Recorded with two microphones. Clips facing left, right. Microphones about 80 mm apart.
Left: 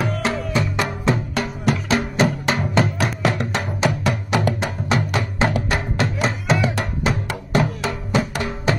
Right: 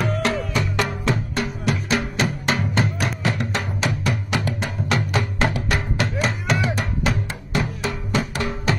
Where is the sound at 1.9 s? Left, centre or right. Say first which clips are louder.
Left 5 dB; left.